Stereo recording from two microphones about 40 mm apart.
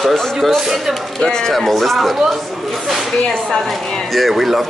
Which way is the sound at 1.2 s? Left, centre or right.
Centre.